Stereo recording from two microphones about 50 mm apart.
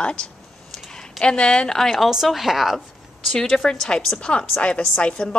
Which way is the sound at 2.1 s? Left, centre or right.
Centre.